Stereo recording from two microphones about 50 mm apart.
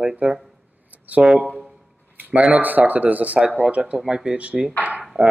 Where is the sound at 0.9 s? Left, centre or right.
Right.